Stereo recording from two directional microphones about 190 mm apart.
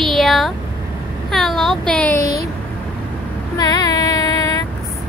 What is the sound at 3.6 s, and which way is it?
Child singing, 20° left (ahead or behind).